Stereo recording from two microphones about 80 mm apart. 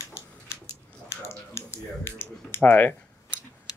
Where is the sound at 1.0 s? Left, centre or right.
Left.